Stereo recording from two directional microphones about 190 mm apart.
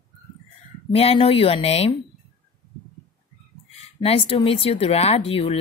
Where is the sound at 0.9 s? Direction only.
30° left (ahead or behind).